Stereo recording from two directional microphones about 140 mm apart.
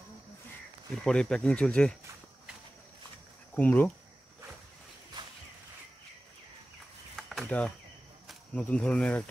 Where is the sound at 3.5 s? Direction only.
10° left (ahead or behind).